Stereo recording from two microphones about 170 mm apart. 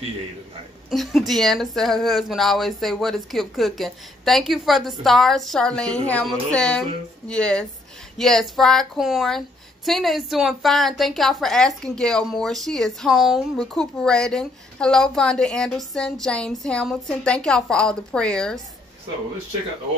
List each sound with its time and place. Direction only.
0.8 s a woman's voice: centre (ahead or behind)